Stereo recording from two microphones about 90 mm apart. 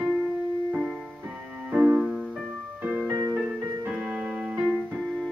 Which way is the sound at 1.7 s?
10° right (ahead or behind).